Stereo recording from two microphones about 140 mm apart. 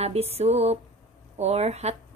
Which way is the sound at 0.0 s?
45° right (ahead or behind).